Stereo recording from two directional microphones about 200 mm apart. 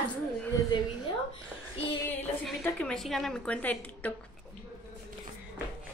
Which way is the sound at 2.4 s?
5° left (ahead or behind).